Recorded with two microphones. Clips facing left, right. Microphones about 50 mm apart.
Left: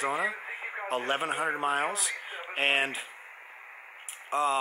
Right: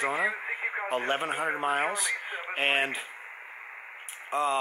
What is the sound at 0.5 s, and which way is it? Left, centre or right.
Radio, centre.